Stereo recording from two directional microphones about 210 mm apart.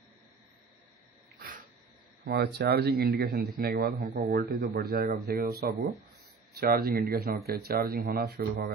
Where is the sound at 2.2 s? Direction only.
50° right (ahead or behind).